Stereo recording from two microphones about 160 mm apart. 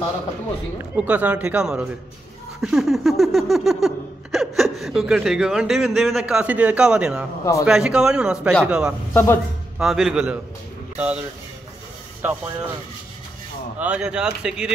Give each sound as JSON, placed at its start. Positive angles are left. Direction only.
{"t": 0.9, "sound": "speech", "side_deg": -10}
{"t": 2.6, "sound": "a sound", "side_deg": -5}
{"t": 4.7, "sound": "a man's voice", "side_deg": 0}
{"t": 9.1, "sound": "a man's voice", "side_deg": 15}
{"t": 9.8, "sound": "a man's voice", "side_deg": 0}
{"t": 12.2, "sound": "speech", "side_deg": -10}
{"t": 13.7, "sound": "a man's voice", "side_deg": -5}